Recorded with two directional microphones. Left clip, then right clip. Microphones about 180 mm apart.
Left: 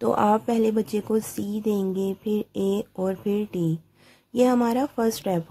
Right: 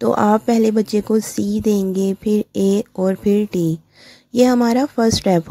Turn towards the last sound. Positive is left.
turn(degrees=-30)  # may be behind; listen again after turning